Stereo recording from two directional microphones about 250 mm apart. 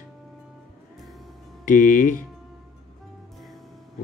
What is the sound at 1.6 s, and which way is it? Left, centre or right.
Speech, left.